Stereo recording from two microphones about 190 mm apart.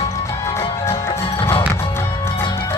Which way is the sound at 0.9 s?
30° left (ahead or behind).